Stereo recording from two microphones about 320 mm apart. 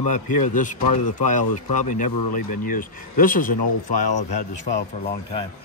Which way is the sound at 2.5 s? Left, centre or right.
Left.